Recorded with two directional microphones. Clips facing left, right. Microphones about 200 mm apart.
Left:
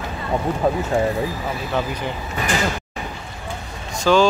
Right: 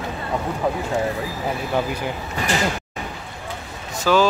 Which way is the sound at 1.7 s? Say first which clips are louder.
Even; 10° right (ahead or behind).